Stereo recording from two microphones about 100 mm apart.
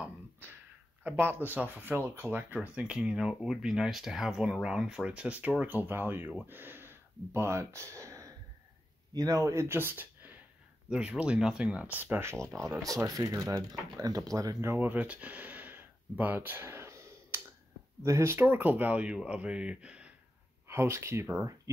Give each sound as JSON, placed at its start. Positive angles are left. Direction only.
{"t": 0.0, "sound": "a sound", "side_deg": -20}
{"t": 1.0, "sound": "speech", "side_deg": -20}
{"t": 12.8, "sound": "speech", "side_deg": -35}
{"t": 20.6, "sound": "speech", "side_deg": -25}